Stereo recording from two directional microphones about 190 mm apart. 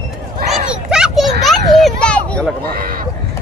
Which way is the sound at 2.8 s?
50° right (ahead or behind).